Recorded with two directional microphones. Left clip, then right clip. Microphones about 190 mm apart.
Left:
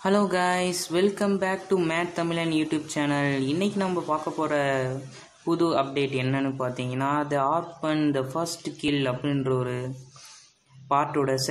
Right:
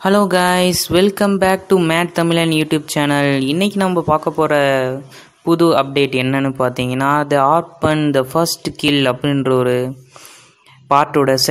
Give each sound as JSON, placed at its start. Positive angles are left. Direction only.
{"t": 0.0, "sound": "speech", "side_deg": -35}
{"t": 10.9, "sound": "speech", "side_deg": -40}